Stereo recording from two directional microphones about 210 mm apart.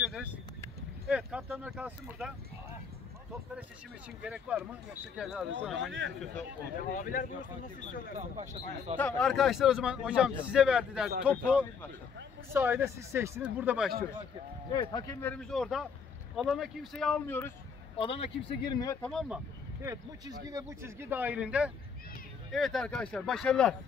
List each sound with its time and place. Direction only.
0.0 s vehicle: 5° right (ahead or behind)
1.0 s speech: 5° right (ahead or behind)
4.2 s speech: 5° right (ahead or behind)
5.8 s speech: 60° right (ahead or behind)
6.8 s speech: 40° left (ahead or behind)
8.2 s speech: 30° right (ahead or behind)
8.9 s speech: 5° left (ahead or behind)
14.7 s speech: 20° left (ahead or behind)
17.9 s speech: 25° left (ahead or behind)
19.0 s speech: centre (ahead or behind)